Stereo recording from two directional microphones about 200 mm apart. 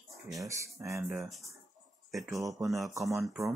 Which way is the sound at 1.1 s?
Centre (ahead or behind).